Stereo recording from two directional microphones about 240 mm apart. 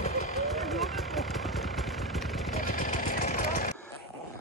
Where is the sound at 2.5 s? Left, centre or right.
Left.